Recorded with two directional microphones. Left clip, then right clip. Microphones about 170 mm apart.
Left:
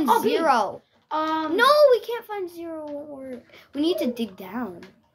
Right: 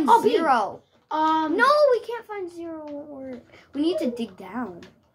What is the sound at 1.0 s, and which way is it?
Speech, 40° right (ahead or behind).